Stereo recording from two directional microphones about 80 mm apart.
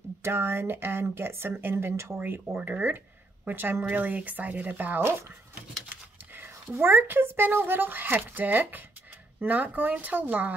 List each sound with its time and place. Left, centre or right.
0.2 s speech: right
5.9 s a sound: right
6.8 s speech: right